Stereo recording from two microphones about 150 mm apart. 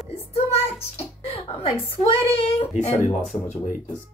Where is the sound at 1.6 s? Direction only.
40° left (ahead or behind).